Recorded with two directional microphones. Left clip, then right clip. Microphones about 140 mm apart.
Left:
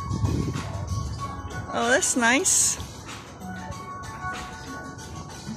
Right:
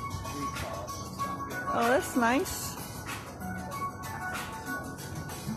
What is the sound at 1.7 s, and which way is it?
Speech, 15° left (ahead or behind).